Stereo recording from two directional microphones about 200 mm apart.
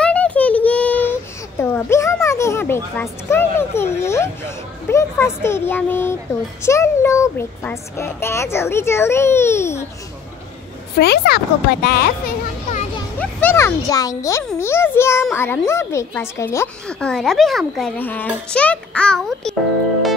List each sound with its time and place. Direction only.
0.0 s a sound: 5° left (ahead or behind)
4.8 s a child's voice: 15° left (ahead or behind)
11.0 s speech: 55° left (ahead or behind)
13.2 s a child's voice: 10° left (ahead or behind)